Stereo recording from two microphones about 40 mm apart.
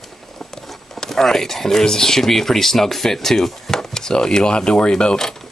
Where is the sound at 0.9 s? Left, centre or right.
Centre.